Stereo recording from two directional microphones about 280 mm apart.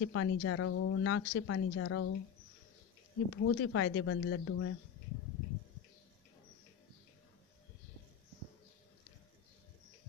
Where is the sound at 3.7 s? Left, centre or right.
Left.